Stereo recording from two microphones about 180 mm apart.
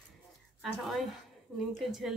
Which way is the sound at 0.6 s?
Centre (ahead or behind).